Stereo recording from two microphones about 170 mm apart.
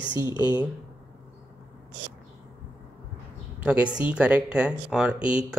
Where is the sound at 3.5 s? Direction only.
5° right (ahead or behind).